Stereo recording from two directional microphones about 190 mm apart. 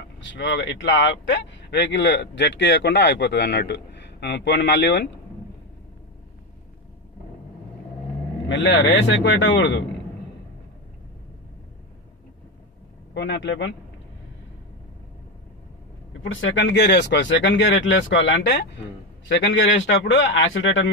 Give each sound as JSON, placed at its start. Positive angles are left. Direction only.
{"t": 0.2, "sound": "speech", "side_deg": 70}
{"t": 8.5, "sound": "speech", "side_deg": 80}
{"t": 13.1, "sound": "speech", "side_deg": 70}
{"t": 16.1, "sound": "speech", "side_deg": 85}